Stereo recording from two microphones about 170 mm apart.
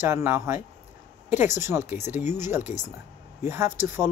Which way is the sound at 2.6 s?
45° left (ahead or behind).